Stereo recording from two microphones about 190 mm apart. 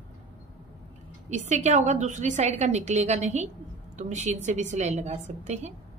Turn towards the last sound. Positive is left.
turn(degrees=-35)  # may be behind; listen again after turning